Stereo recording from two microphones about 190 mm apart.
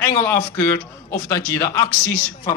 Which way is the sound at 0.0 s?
15° left (ahead or behind).